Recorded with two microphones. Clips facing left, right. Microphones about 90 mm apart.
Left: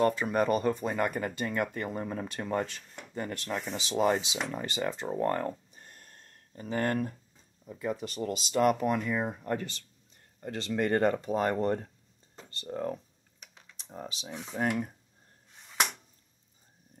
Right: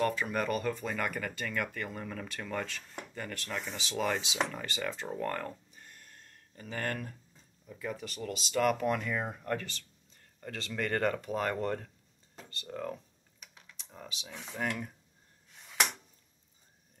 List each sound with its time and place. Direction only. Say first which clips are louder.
0.0 s speech: left 5 dB; 30° left (ahead or behind)
8.5 s speech: left 3 dB; 15° left (ahead or behind)